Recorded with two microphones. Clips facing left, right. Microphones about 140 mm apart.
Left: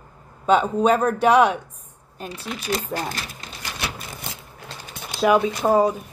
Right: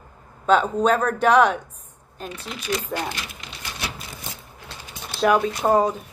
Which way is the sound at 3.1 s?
40° left (ahead or behind).